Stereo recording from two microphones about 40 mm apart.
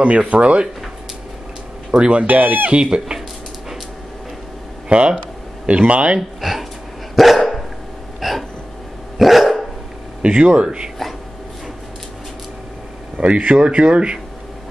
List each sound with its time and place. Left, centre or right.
0.3 s speech: right
1.9 s speech: right
2.2 s speech: right
2.7 s speech: right
4.8 s speech: right
6.4 s speech: centre
7.2 s dog: centre
8.2 s a sound: centre
9.2 s dog: centre
10.2 s speech: right
13.2 s speech: right